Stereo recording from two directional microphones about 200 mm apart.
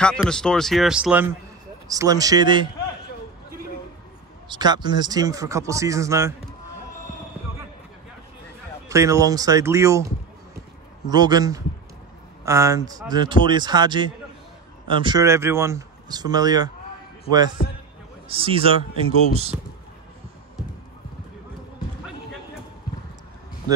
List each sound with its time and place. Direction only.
0.0 s speech: 5° left (ahead or behind)
1.9 s speech: 20° right (ahead or behind)
4.5 s speech: 20° right (ahead or behind)
8.8 s speech: 15° right (ahead or behind)
17.6 s a man's voice: 50° left (ahead or behind)
18.3 s speech: 30° right (ahead or behind)